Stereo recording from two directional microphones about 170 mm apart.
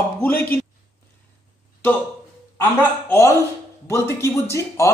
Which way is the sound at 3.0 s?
15° left (ahead or behind).